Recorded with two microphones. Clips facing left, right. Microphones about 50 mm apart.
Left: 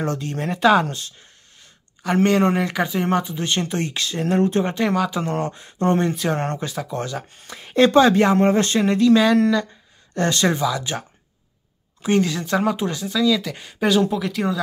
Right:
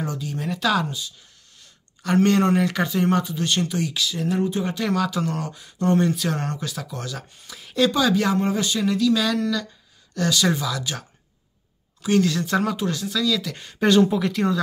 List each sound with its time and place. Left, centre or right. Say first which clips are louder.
0.0 s speech: left 4 dB; left
0.5 s speech: left 6 dB; left
0.8 s speech: left 1 dB; left
2.2 s speech: left 2 dB; centre; by 4.6 s left
4.6 s speech: left 3 dB; left
4.9 s speech: left 2 dB; centre
5.2 s speech: left 3 dB; left
8.4 s speech: left 5 dB; left
10.6 s speech: left 5 dB; left
12.3 s speech: left 1 dB; centre
12.7 s speech: left 2 dB; left; by 14.6 s centre